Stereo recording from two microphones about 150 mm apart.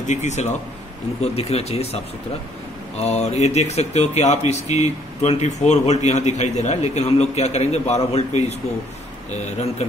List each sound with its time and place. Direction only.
0.0 s speech: 50° left (ahead or behind)
3.0 s speech: 45° left (ahead or behind)